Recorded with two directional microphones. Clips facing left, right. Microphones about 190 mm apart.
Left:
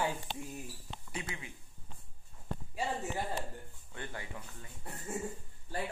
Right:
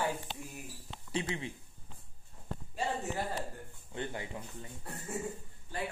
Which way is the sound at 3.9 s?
20° right (ahead or behind).